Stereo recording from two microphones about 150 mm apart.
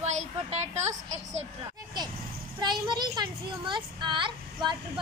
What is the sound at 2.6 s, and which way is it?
A child's voice, 30° right (ahead or behind).